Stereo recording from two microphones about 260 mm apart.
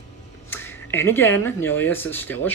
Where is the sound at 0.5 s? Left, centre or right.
Centre.